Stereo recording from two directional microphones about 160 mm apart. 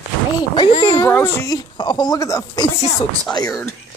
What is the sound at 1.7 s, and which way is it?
Speech, 30° left (ahead or behind).